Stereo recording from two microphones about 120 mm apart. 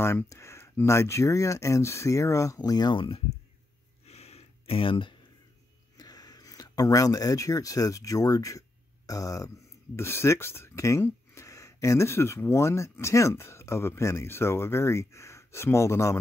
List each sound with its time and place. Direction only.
0.0 s speech: 20° left (ahead or behind); by 3.2 s 45° left (ahead or behind)
4.0 s a sound: 60° left (ahead or behind)
5.9 s speech: 35° left (ahead or behind)